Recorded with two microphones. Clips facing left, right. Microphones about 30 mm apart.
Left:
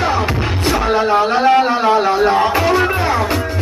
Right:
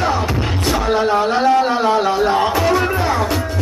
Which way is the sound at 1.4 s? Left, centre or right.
Left.